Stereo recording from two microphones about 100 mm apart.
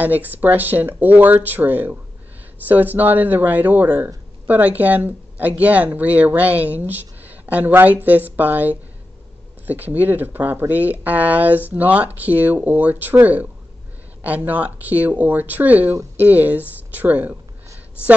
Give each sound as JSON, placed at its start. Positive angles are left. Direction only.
{"t": 0.0, "sound": "speech", "side_deg": -15}